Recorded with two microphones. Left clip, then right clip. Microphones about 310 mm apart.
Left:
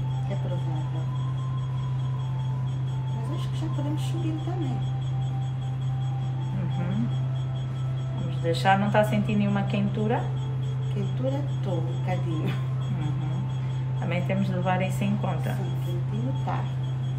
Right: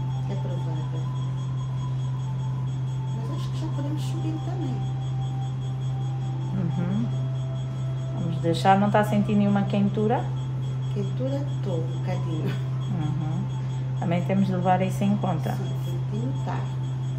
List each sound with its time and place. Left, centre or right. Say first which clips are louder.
8.5 s a woman's voice: right 2 dB; right
14.0 s a woman's voice: right 3 dB; right